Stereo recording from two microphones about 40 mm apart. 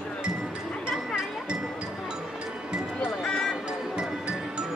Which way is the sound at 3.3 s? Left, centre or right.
Centre.